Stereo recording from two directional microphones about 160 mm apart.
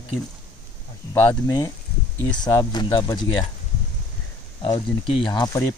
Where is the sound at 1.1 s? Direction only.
15° left (ahead or behind).